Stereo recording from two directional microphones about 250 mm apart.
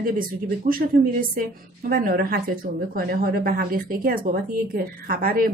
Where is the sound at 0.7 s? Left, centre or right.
Right.